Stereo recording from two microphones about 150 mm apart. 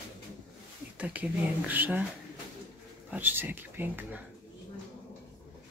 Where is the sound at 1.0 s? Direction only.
10° right (ahead or behind).